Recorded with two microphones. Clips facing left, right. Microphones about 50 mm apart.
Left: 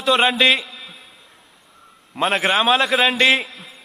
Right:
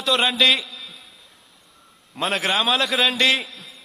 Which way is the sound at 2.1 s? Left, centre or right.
Left.